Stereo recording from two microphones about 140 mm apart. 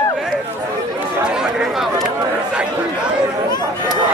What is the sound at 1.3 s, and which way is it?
Chatter, 5° right (ahead or behind).